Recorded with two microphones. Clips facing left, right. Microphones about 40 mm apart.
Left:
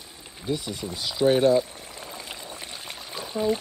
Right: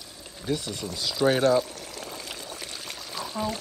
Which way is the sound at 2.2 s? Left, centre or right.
Centre.